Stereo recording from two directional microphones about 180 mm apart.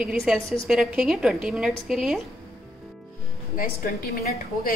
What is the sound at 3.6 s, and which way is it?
A woman's voice, 55° left (ahead or behind).